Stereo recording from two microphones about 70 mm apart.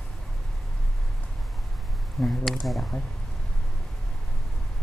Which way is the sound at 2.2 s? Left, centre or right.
Centre.